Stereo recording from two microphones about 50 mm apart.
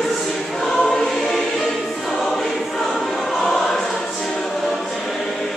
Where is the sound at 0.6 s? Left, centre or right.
Centre.